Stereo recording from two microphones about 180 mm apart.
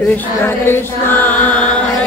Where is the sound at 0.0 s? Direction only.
10° left (ahead or behind).